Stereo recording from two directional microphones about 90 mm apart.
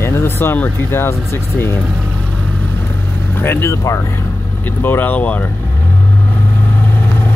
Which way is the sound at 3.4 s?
25° left (ahead or behind).